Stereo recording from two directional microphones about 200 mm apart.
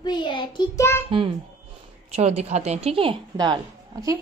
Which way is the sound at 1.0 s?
25° right (ahead or behind).